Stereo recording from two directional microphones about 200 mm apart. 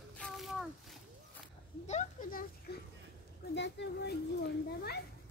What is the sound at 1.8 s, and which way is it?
Speech, 40° left (ahead or behind).